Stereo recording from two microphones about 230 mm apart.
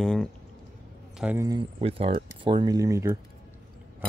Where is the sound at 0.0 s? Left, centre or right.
Centre.